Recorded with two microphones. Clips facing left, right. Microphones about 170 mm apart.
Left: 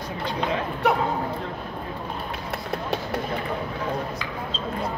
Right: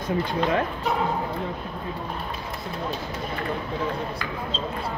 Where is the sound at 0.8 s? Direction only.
65° left (ahead or behind).